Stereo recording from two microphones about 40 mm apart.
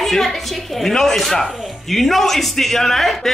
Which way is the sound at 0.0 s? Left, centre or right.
Centre.